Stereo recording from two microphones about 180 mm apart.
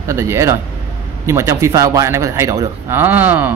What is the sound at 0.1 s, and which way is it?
A man's voice, 15° right (ahead or behind).